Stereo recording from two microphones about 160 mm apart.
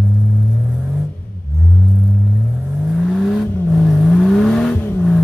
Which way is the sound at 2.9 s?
Centre (ahead or behind).